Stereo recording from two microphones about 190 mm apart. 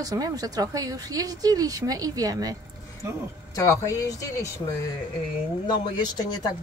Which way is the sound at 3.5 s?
15° left (ahead or behind).